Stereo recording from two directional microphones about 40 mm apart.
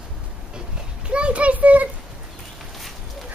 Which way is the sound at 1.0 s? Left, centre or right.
Right.